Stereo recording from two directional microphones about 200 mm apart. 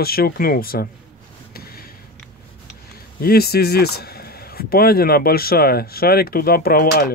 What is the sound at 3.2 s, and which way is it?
Speech, 50° left (ahead or behind).